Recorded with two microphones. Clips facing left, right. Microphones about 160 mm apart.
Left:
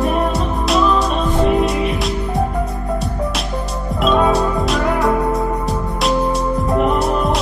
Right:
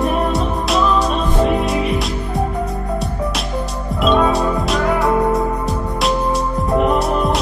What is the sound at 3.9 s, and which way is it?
Music, centre (ahead or behind).